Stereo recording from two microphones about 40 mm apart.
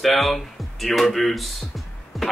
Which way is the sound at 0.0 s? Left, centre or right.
Centre.